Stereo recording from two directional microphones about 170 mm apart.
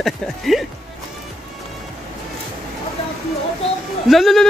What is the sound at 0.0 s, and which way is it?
Speech, centre (ahead or behind).